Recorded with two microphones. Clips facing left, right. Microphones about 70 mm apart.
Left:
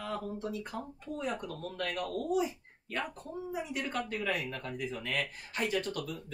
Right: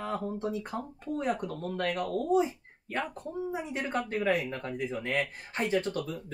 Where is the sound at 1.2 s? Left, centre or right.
Right.